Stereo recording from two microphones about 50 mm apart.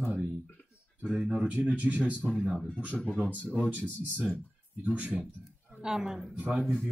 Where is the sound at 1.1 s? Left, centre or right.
Centre.